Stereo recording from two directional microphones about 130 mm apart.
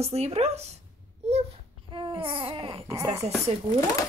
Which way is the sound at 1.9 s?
45° right (ahead or behind).